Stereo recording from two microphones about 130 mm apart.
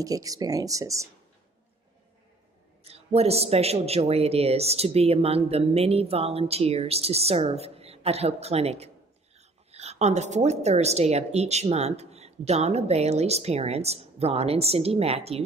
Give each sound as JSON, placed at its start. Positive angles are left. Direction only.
{"t": 0.0, "sound": "speech", "side_deg": -25}
{"t": 2.8, "sound": "a woman's voice", "side_deg": -50}